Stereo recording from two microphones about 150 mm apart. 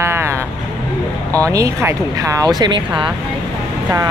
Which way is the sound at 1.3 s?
20° right (ahead or behind).